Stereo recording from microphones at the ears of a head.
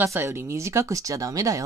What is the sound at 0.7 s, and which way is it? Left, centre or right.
Speech, right.